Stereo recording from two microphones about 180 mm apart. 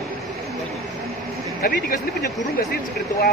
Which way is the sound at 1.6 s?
55° left (ahead or behind).